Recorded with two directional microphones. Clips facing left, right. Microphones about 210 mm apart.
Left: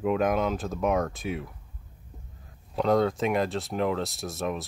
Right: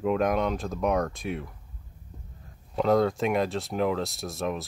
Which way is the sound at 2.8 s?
Centre (ahead or behind).